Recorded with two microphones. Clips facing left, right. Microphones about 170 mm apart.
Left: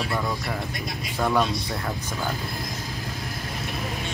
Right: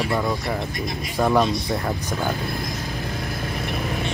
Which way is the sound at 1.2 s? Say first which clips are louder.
Right 4 dB; 20° right (ahead or behind).